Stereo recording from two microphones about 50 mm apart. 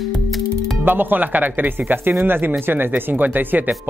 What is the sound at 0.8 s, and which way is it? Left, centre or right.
Speech, right.